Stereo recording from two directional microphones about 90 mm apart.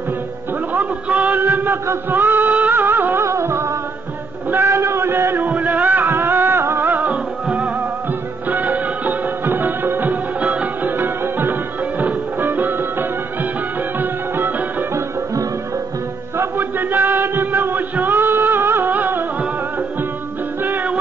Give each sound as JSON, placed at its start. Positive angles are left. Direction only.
{"t": 0.7, "sound": "music", "side_deg": -15}
{"t": 4.5, "sound": "a sound", "side_deg": -25}
{"t": 7.4, "sound": "music", "side_deg": -15}
{"t": 13.9, "sound": "music", "side_deg": -20}
{"t": 16.3, "sound": "a sound", "side_deg": -20}
{"t": 20.6, "sound": "music", "side_deg": -20}